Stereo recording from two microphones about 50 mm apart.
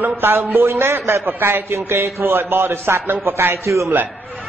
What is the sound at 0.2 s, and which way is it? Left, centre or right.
A man's voice, right.